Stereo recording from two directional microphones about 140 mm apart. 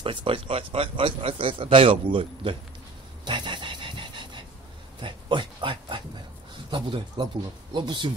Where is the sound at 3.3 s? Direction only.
35° right (ahead or behind).